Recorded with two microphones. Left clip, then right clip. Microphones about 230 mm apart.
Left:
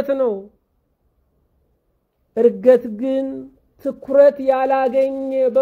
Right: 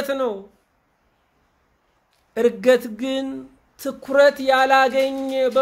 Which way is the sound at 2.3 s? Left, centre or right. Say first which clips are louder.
Left 4 dB; centre.